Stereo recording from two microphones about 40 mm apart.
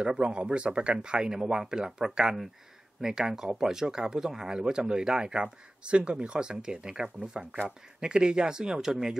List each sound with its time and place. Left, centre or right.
0.1 s speech: right